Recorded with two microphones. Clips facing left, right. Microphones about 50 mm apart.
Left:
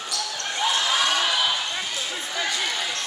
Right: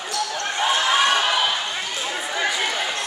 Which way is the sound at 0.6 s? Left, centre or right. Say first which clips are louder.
Right 4 dB; right.